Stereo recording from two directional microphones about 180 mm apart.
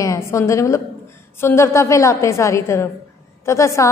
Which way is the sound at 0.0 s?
15° left (ahead or behind).